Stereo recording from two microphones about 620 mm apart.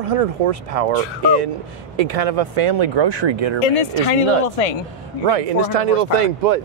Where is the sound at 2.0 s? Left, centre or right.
Right.